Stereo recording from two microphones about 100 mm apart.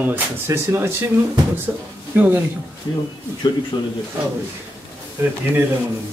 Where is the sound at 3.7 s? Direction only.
45° left (ahead or behind).